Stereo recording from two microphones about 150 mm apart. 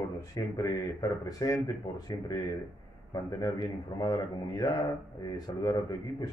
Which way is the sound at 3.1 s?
25° left (ahead or behind).